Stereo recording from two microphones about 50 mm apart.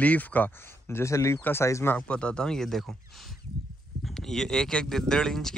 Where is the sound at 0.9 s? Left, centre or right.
Left.